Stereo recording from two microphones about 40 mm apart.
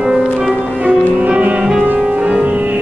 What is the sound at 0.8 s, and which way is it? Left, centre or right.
Music, right.